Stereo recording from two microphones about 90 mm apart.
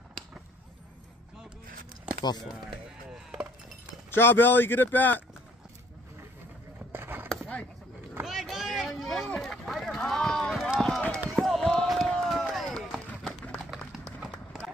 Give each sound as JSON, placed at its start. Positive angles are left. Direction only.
{"t": 3.1, "sound": "chop", "side_deg": -10}
{"t": 4.1, "sound": "speech", "side_deg": 25}
{"t": 6.9, "sound": "a sound", "side_deg": -25}
{"t": 7.2, "sound": "a sound", "side_deg": 15}
{"t": 8.2, "sound": "vehicle", "side_deg": 0}
{"t": 9.3, "sound": "run", "side_deg": 5}
{"t": 14.3, "sound": "clip-clop", "side_deg": 5}